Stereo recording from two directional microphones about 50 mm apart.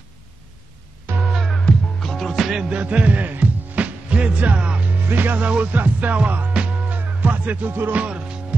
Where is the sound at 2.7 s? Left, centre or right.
Right.